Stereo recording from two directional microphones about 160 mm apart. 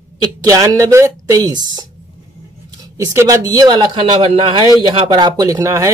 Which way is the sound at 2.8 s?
20° right (ahead or behind).